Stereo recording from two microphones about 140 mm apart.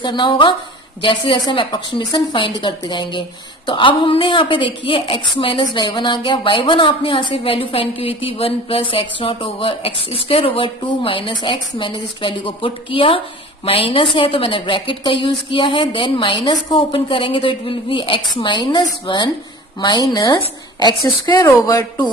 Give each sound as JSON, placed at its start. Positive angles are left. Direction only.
{"t": 0.0, "sound": "a woman's voice", "side_deg": 35}